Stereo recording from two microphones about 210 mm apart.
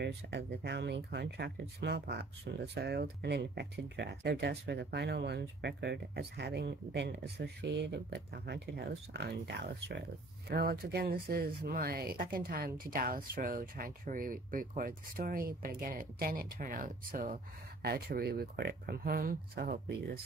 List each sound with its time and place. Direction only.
0.0 s speech: 55° right (ahead or behind)